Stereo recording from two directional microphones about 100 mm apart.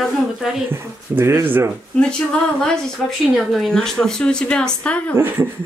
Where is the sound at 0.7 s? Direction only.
25° right (ahead or behind).